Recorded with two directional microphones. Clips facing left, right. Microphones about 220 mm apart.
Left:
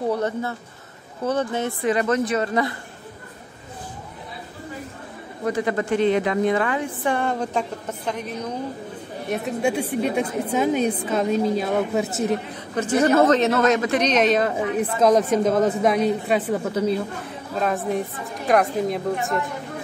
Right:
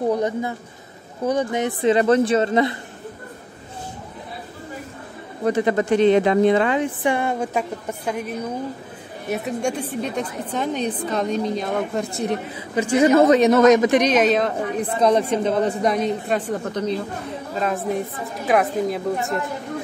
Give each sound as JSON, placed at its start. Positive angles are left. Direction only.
{"t": 0.1, "sound": "a woman's voice", "side_deg": -15}
{"t": 5.5, "sound": "speech", "side_deg": -20}
{"t": 7.2, "sound": "a woman's voice", "side_deg": -10}
{"t": 12.5, "sound": "a man's voice", "side_deg": -10}